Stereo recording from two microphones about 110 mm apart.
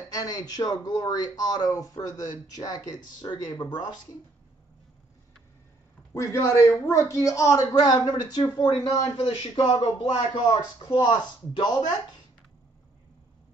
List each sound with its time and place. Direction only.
0.1 s speech: 35° left (ahead or behind)
6.1 s speech: 25° left (ahead or behind)
7.8 s speech: 40° left (ahead or behind)